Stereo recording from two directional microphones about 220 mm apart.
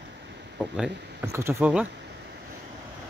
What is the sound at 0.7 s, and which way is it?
Speech, 5° right (ahead or behind).